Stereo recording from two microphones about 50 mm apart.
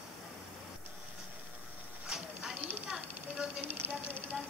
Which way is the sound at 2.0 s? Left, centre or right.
Centre.